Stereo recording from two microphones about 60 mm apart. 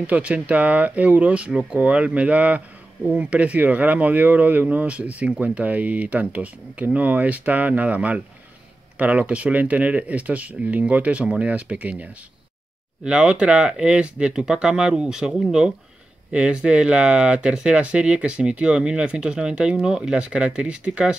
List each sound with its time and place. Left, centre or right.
0.0 s speech: right